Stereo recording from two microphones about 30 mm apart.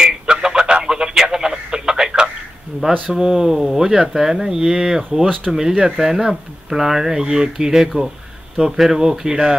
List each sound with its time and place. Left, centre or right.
0.0 s radio: right
3.2 s speech: centre